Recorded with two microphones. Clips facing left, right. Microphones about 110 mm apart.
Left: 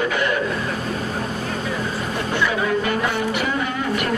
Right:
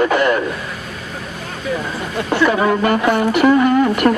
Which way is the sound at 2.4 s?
55° right (ahead or behind).